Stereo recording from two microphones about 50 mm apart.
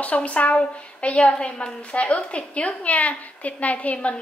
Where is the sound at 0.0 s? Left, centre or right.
Left.